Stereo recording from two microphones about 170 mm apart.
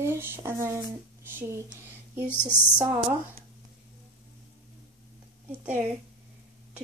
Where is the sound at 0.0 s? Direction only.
15° right (ahead or behind).